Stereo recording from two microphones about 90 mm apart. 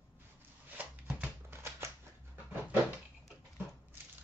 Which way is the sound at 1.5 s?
30° right (ahead or behind).